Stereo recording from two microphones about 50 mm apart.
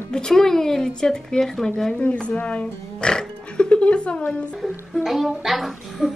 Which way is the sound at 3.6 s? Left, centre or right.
Left.